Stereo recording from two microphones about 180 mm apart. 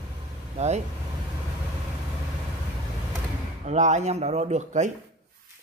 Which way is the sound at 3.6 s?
40° right (ahead or behind).